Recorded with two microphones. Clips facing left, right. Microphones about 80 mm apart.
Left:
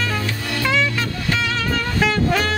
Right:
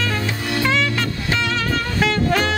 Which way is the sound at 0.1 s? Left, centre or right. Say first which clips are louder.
Right 1 dB; right.